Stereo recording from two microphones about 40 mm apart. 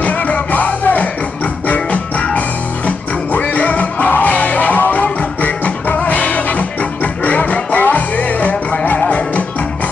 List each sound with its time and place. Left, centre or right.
0.0 s music: left
3.3 s music: left